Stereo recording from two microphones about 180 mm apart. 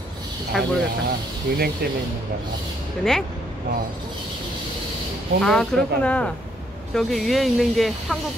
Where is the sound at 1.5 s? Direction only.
60° right (ahead or behind).